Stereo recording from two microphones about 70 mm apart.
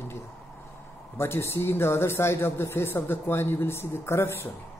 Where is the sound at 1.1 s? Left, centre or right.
Left.